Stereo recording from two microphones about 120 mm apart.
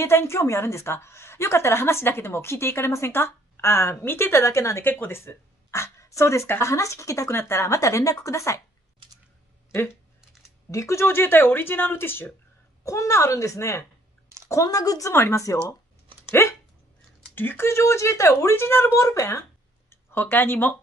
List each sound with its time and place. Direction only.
0.0 s a woman's voice: 20° left (ahead or behind)
10.7 s a woman's voice: 25° left (ahead or behind)
16.3 s dog: 20° left (ahead or behind)
17.4 s a woman's voice: 20° left (ahead or behind)